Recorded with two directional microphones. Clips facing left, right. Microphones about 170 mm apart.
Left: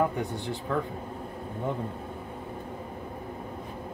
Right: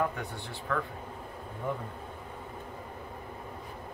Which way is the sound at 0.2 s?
20° left (ahead or behind).